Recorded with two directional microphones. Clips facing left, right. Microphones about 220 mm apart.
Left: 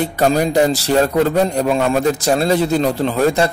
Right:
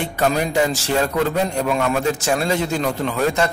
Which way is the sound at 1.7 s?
30° left (ahead or behind).